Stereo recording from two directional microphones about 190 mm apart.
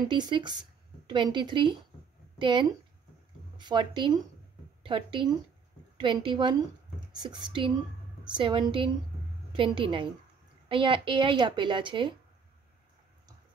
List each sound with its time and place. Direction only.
0.1 s a woman's voice: 25° right (ahead or behind)